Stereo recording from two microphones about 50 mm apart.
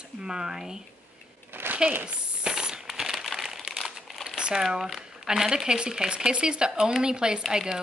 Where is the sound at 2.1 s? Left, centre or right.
Centre.